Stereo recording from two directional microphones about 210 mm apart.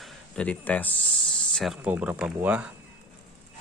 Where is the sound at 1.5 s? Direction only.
Centre (ahead or behind).